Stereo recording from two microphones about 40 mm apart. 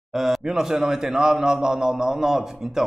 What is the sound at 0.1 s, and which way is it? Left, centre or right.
Speech, centre.